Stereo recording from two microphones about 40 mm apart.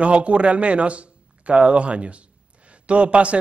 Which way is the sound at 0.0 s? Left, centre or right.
Right.